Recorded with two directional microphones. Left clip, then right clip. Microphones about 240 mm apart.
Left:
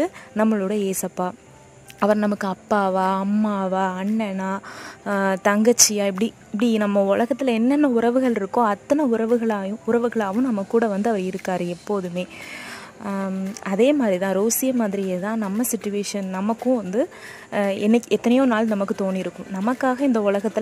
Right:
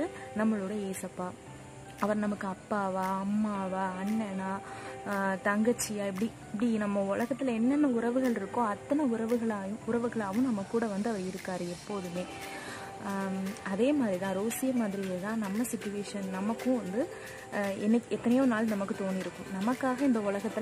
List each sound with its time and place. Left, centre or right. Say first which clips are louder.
0.0 s speech: left 11 dB; left
13.0 s speech: left 8 dB; left